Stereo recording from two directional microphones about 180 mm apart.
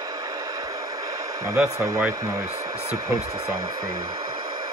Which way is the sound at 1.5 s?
10° right (ahead or behind).